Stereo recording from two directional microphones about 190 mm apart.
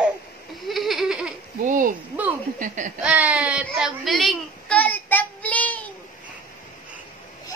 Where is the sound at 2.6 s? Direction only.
40° right (ahead or behind).